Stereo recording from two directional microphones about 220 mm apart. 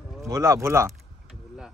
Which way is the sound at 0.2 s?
15° right (ahead or behind).